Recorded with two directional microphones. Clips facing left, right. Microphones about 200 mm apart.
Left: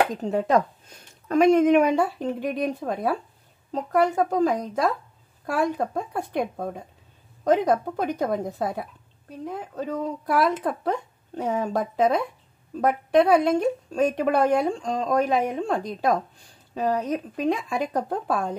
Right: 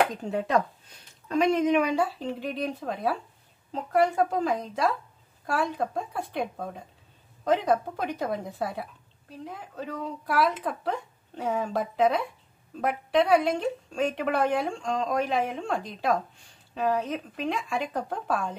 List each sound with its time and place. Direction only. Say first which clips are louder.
0.2 s speech: left 4 dB; 40° left (ahead or behind)
6.1 s speech: left 4 dB; 50° left (ahead or behind)